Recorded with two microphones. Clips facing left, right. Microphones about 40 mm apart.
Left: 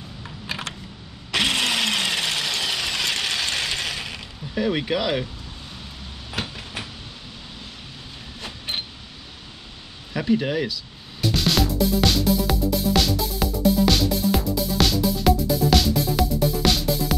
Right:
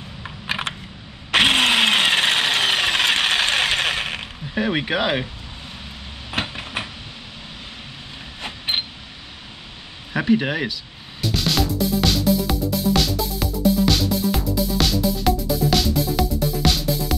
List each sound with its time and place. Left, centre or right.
0.2 s typing: right
1.3 s a sound: right
4.6 s speech: right
6.3 s vehicle: right
8.4 s a sound: right
10.1 s speech: right
11.1 s music: centre